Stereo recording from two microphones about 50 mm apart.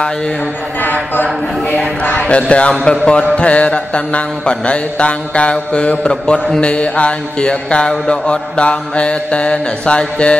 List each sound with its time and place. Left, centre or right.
1.1 s mantra: left